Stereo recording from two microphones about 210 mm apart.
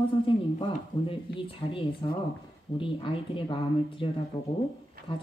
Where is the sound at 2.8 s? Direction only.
25° left (ahead or behind).